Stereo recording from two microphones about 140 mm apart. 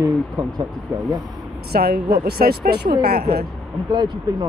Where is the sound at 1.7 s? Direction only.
90° right.